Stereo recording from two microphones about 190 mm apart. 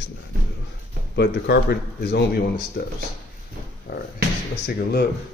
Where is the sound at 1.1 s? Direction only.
60° left (ahead or behind).